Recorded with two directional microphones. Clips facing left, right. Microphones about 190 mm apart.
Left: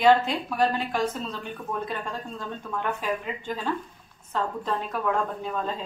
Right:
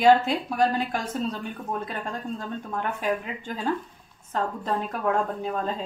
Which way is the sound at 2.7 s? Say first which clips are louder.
Right 1 dB; 45° right (ahead or behind).